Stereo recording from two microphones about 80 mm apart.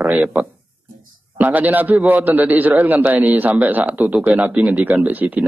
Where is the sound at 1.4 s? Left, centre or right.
Right.